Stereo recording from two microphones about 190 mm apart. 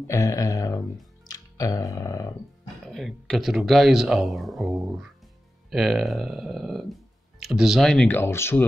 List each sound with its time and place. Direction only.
0.0 s speech: 15° left (ahead or behind)
2.9 s speech: centre (ahead or behind)